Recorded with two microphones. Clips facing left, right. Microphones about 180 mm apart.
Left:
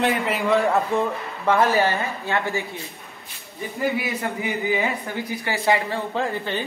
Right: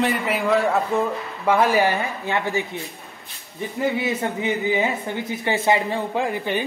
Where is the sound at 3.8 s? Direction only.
25° right (ahead or behind).